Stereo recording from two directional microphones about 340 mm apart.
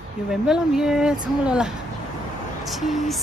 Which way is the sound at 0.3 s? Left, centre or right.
Centre.